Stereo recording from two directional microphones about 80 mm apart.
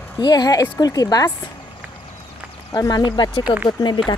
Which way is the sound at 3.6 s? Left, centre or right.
Left.